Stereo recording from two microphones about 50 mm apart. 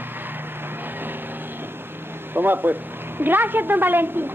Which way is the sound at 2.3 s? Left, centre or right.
Right.